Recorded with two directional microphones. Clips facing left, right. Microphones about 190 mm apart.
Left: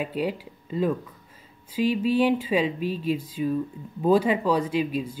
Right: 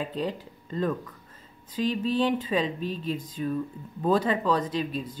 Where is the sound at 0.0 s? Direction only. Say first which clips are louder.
Left 3 dB; 10° left (ahead or behind).